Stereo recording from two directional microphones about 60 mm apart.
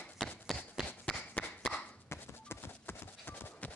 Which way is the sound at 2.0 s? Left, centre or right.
Left.